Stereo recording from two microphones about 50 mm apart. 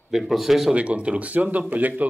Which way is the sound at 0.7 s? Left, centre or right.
Right.